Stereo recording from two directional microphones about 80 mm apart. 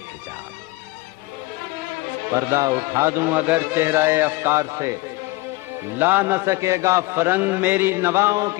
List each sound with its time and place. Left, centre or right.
2.5 s a man's voice: right
5.9 s a man's voice: right